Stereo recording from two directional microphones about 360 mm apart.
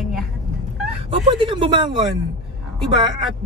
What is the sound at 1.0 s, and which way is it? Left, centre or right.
Speech, centre.